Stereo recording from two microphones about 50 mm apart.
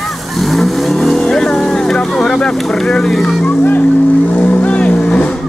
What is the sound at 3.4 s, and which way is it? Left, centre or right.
Speech, left.